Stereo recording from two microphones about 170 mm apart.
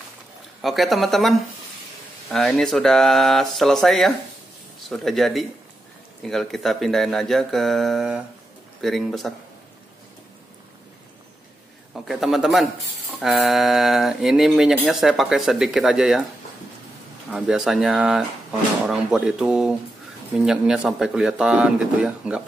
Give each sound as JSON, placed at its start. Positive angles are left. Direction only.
{"t": 0.6, "sound": "speech", "side_deg": 0}
{"t": 11.9, "sound": "a man's voice", "side_deg": 0}
{"t": 17.3, "sound": "speech", "side_deg": -5}